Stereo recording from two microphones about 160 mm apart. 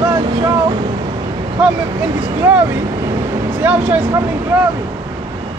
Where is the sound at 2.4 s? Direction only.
10° right (ahead or behind).